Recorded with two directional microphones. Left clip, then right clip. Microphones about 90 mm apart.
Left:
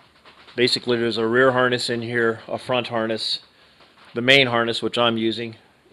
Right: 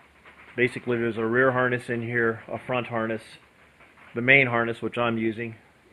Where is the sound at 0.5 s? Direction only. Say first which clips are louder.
Left 5 dB; 60° left (ahead or behind).